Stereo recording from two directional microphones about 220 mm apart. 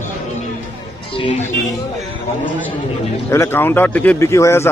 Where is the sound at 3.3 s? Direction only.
10° left (ahead or behind).